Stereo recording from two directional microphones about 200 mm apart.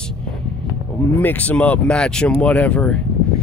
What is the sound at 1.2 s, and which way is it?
Speech, 10° left (ahead or behind).